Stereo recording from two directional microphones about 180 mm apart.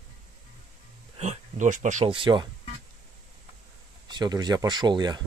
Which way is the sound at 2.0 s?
30° right (ahead or behind).